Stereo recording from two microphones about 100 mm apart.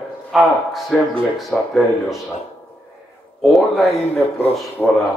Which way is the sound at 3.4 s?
Centre (ahead or behind).